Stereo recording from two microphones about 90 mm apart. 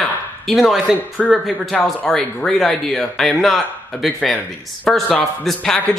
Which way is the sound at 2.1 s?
5° left (ahead or behind).